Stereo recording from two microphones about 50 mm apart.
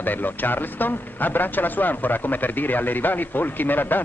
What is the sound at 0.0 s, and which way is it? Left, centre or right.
Speech, left.